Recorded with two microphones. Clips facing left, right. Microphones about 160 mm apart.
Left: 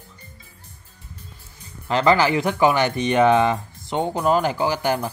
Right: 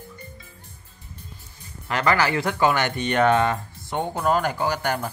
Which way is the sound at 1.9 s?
25° left (ahead or behind).